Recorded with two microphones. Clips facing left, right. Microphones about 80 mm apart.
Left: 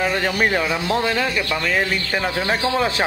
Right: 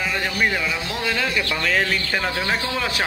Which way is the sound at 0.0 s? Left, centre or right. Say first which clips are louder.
Left 3 dB; left.